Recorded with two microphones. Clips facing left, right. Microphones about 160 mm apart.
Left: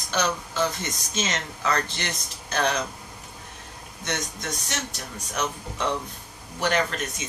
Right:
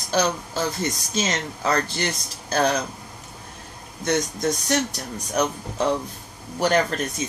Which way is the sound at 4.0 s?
35° right (ahead or behind).